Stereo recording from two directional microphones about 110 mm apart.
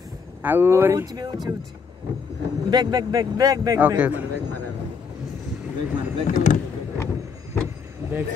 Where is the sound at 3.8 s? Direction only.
15° right (ahead or behind).